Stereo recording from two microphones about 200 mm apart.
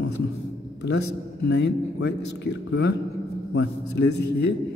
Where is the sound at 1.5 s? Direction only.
60° left (ahead or behind).